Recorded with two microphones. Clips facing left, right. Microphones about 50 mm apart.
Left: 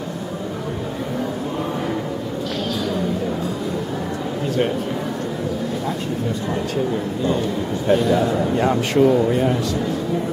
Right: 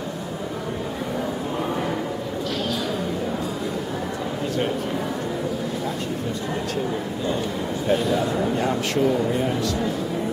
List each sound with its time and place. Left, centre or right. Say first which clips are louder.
7.9 s a man's voice: left 5 dB; centre
8.6 s a man's voice: left 9 dB; centre